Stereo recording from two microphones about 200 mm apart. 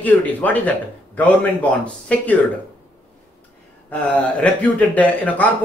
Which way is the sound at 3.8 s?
5° left (ahead or behind).